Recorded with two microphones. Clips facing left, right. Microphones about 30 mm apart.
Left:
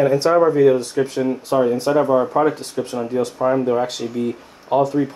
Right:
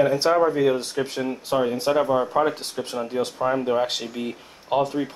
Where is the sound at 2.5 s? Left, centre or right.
Right.